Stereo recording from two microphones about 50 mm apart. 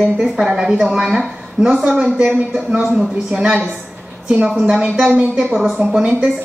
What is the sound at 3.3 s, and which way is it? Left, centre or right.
Speech, right.